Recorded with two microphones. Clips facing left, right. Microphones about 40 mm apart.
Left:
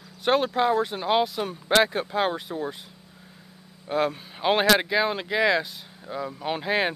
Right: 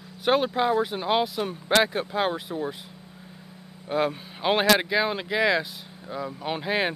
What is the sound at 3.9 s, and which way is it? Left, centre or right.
Speech, centre.